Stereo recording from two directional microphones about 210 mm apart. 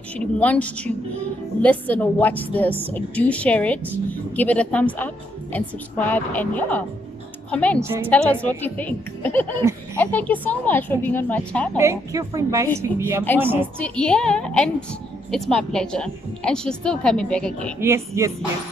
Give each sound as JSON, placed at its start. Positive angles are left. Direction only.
{"t": 0.2, "sound": "a woman's voice", "side_deg": 5}
{"t": 7.8, "sound": "a woman's voice", "side_deg": -10}
{"t": 8.1, "sound": "a woman's voice", "side_deg": 5}
{"t": 11.8, "sound": "a woman's voice", "side_deg": -15}
{"t": 13.7, "sound": "a woman's voice", "side_deg": 5}
{"t": 17.7, "sound": "a woman's voice", "side_deg": -10}